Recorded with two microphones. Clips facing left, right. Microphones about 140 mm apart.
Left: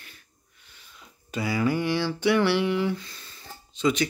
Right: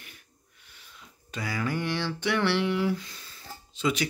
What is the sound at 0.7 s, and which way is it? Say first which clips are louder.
Speech: left 1 dB; 5° left (ahead or behind).